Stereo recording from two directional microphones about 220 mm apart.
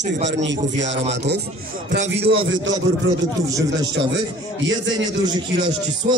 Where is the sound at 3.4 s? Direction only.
15° right (ahead or behind).